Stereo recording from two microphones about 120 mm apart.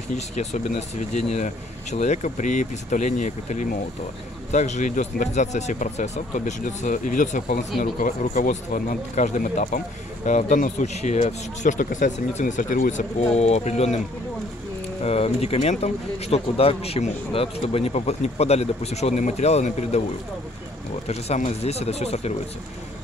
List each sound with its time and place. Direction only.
0.1 s speech: 65° left (ahead or behind)
15.0 s speech: 60° left (ahead or behind)
21.1 s speech: 65° left (ahead or behind)